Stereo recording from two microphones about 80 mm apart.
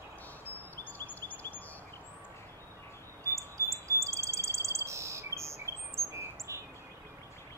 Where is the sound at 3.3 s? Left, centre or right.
Right.